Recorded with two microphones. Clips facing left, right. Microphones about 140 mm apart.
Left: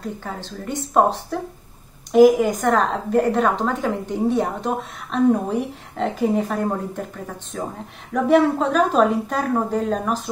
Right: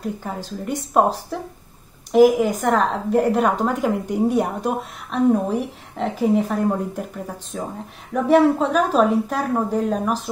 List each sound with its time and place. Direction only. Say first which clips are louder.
0.5 s speech: right 1 dB; 10° right (ahead or behind)
2.1 s a woman's voice: left 1 dB; centre (ahead or behind)
8.1 s a woman's voice: right 1 dB; 5° right (ahead or behind)